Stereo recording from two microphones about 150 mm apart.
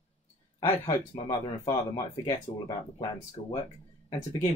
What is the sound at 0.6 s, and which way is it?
Speech, 20° left (ahead or behind).